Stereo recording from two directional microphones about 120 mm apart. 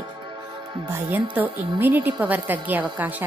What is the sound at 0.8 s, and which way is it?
A woman's voice, 15° right (ahead or behind).